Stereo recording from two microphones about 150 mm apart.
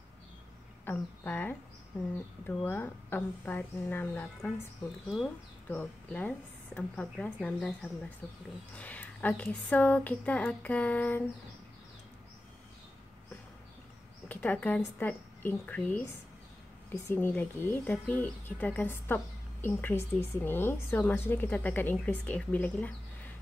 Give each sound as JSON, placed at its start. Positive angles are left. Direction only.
{"t": 0.8, "sound": "speech", "side_deg": 10}
{"t": 5.7, "sound": "speech", "side_deg": 10}
{"t": 14.3, "sound": "speech", "side_deg": 10}